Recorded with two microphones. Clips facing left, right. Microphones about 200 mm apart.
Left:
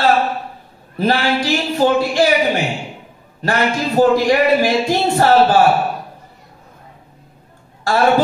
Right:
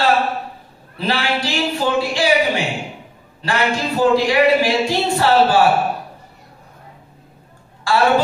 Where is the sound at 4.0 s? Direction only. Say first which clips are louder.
Left 2 dB; 45° left (ahead or behind).